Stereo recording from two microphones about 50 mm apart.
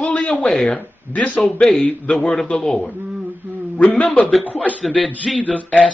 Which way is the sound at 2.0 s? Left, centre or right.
Centre.